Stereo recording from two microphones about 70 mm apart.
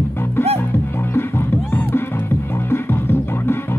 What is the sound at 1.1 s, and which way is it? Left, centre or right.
Music, left.